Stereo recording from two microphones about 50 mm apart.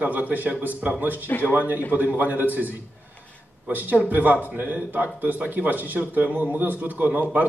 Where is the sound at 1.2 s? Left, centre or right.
Left.